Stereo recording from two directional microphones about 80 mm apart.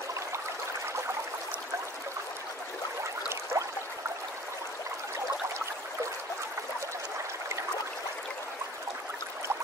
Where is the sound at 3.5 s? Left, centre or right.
Right.